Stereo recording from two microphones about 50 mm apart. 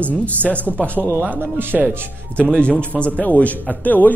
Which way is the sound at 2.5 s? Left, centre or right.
Left.